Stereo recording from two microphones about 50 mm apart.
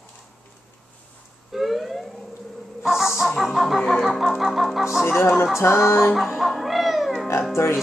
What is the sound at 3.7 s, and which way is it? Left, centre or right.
Chicken, centre.